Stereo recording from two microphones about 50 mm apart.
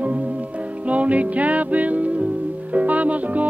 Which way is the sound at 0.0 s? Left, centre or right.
Right.